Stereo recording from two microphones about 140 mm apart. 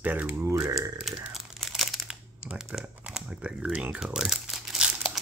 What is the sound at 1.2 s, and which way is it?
Crumpling, 5° right (ahead or behind).